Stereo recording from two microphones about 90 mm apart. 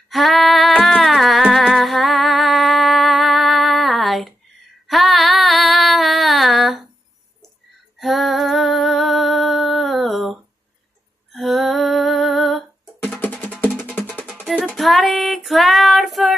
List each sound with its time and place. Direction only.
0.1 s female singing: centre (ahead or behind)
1.6 s music: centre (ahead or behind)
4.8 s a sound: centre (ahead or behind)
8.0 s female singing: centre (ahead or behind)
11.3 s female singing: centre (ahead or behind)
13.0 s music: 15° left (ahead or behind)
14.8 s child singing: centre (ahead or behind)